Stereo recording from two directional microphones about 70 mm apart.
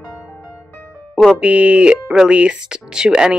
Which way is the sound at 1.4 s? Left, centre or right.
Centre.